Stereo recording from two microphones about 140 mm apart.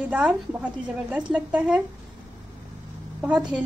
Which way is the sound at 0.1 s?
10° right (ahead or behind).